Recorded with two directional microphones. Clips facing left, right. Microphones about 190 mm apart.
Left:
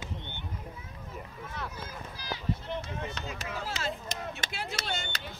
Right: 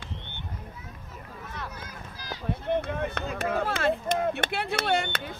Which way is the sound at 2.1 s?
50° right (ahead or behind).